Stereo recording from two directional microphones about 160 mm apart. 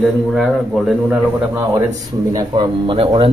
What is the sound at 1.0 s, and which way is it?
Speech, 15° right (ahead or behind).